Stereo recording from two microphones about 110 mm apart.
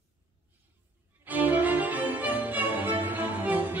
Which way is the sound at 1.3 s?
15° right (ahead or behind).